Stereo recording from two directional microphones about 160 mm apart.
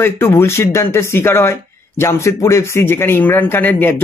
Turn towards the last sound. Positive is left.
turn(degrees=15)  # may be behind; listen again after turning